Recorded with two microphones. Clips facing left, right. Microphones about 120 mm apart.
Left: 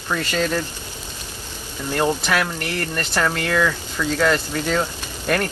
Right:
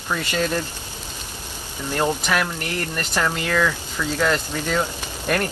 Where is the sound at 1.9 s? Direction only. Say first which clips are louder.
Left 1 dB; centre (ahead or behind).